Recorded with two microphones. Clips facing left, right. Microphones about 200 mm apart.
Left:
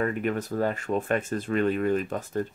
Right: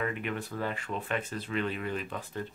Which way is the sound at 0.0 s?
45° left (ahead or behind).